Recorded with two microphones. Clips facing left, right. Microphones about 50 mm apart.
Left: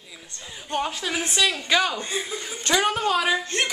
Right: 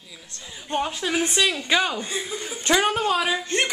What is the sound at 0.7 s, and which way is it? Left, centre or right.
Speech, centre.